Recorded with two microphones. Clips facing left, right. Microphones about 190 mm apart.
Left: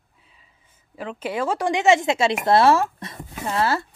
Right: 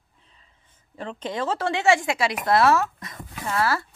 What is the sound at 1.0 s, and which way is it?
Speech, 5° left (ahead or behind).